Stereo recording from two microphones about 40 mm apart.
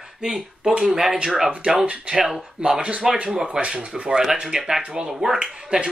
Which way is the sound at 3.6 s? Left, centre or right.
Centre.